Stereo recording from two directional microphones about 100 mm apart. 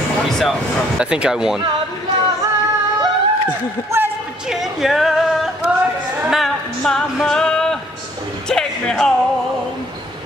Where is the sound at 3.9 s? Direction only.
25° right (ahead or behind).